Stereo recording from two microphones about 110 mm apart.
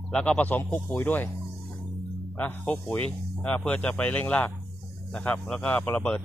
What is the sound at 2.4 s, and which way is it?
Speech, 15° left (ahead or behind).